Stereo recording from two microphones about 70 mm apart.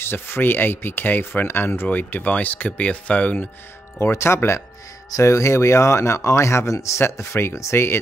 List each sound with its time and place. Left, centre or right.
0.0 s speech: left
4.0 s speech: left